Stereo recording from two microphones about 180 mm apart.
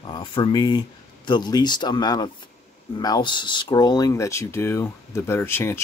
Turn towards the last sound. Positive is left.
turn(degrees=10)  # may be behind; listen again after turning